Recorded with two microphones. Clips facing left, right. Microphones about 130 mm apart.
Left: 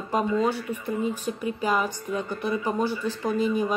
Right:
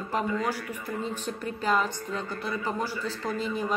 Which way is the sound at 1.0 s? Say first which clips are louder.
Left 4 dB; 10° left (ahead or behind).